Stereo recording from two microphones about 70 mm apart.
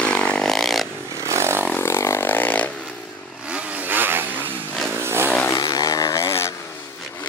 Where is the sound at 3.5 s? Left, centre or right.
Right.